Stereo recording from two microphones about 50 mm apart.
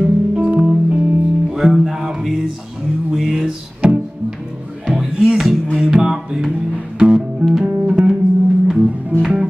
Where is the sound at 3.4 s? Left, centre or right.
Centre.